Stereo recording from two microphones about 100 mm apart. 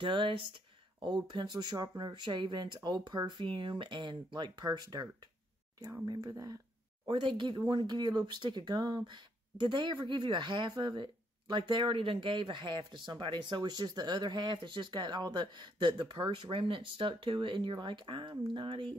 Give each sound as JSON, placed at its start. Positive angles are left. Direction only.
{"t": 0.0, "sound": "speech", "side_deg": -55}
{"t": 1.0, "sound": "speech", "side_deg": -45}
{"t": 6.0, "sound": "speech", "side_deg": -35}
{"t": 7.1, "sound": "speech", "side_deg": -60}